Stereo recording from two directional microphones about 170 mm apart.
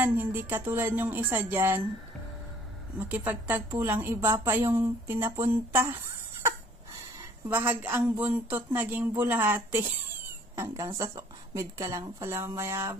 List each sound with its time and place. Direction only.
0.0 s speech: 10° right (ahead or behind)
3.1 s speech: 10° right (ahead or behind)
7.4 s speech: 10° right (ahead or behind)